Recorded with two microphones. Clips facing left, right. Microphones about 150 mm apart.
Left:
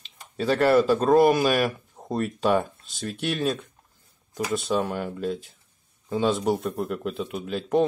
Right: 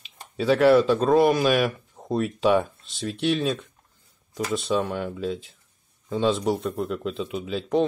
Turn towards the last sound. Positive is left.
turn(degrees=5)  # may be behind; listen again after turning